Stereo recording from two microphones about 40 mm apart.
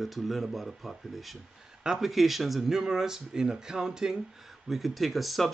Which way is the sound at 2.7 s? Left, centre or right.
Centre.